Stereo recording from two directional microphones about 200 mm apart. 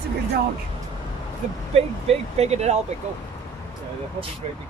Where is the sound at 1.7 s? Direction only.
30° right (ahead or behind).